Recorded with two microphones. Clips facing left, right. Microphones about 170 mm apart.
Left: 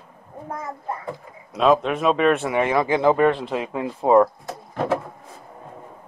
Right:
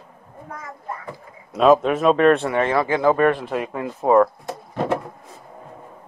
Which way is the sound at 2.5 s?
15° left (ahead or behind).